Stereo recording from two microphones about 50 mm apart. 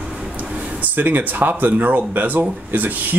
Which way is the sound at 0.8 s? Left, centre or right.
Right.